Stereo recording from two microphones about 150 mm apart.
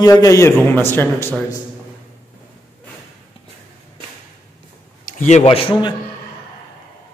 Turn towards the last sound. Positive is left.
turn(degrees=35)  # may be behind; listen again after turning